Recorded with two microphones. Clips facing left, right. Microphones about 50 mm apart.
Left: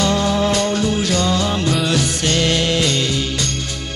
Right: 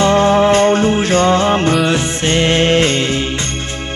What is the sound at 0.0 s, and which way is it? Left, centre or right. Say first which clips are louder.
Music: right 6 dB; right.